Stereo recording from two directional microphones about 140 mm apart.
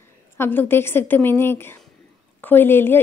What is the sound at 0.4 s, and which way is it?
A woman's voice, 15° left (ahead or behind).